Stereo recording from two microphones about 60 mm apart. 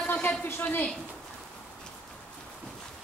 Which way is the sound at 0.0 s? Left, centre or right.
Left.